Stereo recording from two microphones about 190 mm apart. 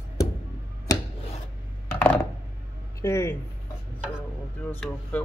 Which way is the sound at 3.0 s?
15° left (ahead or behind).